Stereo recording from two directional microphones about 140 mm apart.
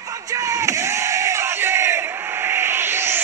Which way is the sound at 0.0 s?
25° right (ahead or behind).